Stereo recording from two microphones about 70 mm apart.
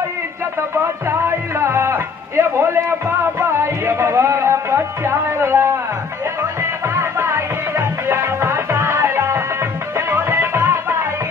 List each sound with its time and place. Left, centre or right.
1.0 s music: right